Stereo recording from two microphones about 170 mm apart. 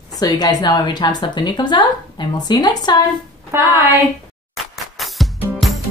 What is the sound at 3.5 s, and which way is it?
Speech, 15° right (ahead or behind).